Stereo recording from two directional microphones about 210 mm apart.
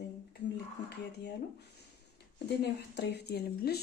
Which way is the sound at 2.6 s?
55° left (ahead or behind).